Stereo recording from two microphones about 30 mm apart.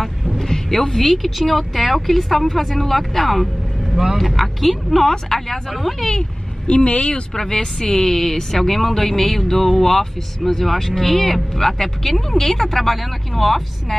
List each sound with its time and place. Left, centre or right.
0.0 s vehicle: centre
1.1 s speech: centre
3.9 s speech: centre
4.2 s a woman's voice: centre
6.7 s speech: left
7.3 s a woman's voice: centre